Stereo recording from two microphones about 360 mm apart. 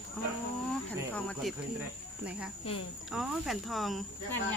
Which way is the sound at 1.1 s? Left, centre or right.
Centre.